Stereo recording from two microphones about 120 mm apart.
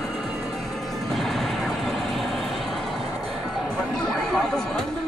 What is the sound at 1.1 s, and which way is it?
Vehicle, centre (ahead or behind).